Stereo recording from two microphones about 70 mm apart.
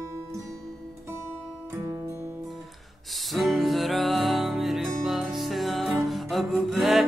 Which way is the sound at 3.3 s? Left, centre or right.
Centre.